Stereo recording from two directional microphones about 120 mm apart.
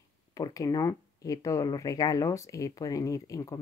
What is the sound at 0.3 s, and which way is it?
Speech, 30° left (ahead or behind).